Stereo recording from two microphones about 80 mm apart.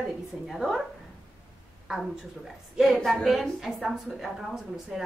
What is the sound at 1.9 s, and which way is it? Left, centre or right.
A woman's voice, centre.